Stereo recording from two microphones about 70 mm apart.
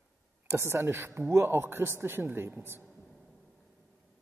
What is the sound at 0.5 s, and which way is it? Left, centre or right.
Speech, right.